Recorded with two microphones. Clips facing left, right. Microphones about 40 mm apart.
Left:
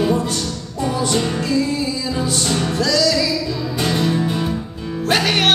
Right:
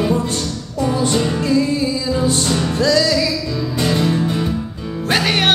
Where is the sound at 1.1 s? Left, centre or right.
Centre.